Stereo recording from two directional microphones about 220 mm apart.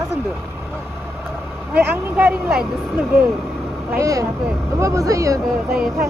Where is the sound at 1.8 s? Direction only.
10° right (ahead or behind).